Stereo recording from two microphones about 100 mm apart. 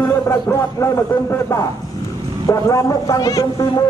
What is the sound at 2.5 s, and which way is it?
Speech, 35° left (ahead or behind).